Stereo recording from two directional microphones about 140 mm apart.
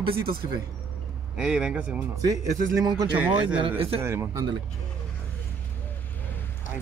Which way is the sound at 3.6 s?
45° right (ahead or behind).